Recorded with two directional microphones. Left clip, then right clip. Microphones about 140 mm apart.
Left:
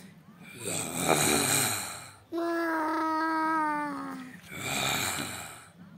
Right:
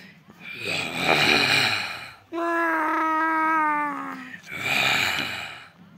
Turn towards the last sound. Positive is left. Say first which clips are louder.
# right 9 dB
turn(degrees=5)  # may be behind; listen again after turning